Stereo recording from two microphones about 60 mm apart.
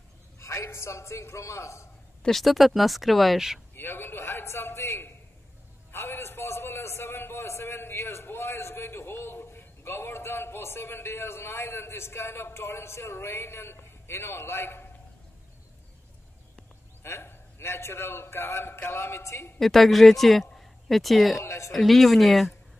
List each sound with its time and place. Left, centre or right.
0.4 s a man's voice: left
2.2 s speech: centre
3.7 s a man's voice: left
17.0 s a man's voice: left
18.9 s a man's voice: left
19.6 s speech: centre
21.5 s a man's voice: left
21.7 s speech: centre